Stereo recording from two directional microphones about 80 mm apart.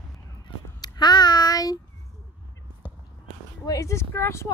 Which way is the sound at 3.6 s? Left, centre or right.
Left.